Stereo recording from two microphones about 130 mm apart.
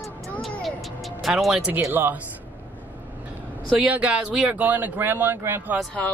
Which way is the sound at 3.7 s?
5° right (ahead or behind).